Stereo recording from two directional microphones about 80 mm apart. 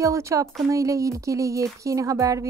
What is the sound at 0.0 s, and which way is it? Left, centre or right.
A woman's voice, right.